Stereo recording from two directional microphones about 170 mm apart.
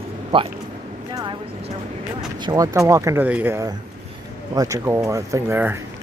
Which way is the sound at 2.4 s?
20° right (ahead or behind).